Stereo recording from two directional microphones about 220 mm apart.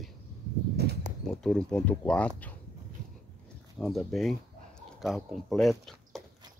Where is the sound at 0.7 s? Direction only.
45° right (ahead or behind).